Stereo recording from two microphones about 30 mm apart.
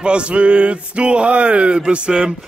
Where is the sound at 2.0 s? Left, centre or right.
Right.